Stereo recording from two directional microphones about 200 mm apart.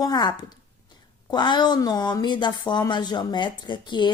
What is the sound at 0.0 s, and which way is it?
A woman's voice, 20° left (ahead or behind).